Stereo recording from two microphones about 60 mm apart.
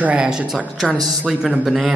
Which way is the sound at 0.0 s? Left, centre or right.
Right.